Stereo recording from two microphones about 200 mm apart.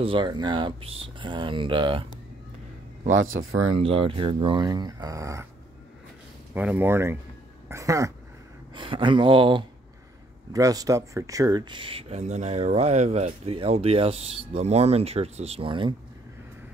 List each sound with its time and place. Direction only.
0.0 s speech: 25° right (ahead or behind)
3.1 s speech: 80° right
3.8 s speech: 25° right (ahead or behind)
6.5 s speech: 10° right (ahead or behind); by 15.9 s 25° right (ahead or behind)